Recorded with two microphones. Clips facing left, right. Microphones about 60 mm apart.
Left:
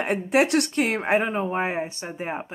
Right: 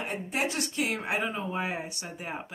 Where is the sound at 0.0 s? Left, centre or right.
Left.